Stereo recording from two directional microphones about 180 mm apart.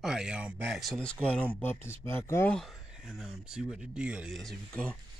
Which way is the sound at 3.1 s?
Centre (ahead or behind).